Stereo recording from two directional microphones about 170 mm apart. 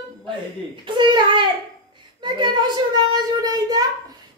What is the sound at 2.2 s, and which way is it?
Child singing, 30° right (ahead or behind).